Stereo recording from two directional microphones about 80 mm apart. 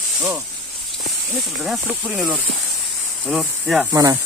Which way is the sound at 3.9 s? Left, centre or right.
Right.